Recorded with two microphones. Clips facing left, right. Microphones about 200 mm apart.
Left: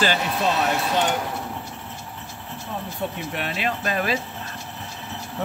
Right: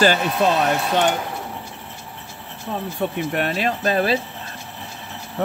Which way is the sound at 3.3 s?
45° right (ahead or behind).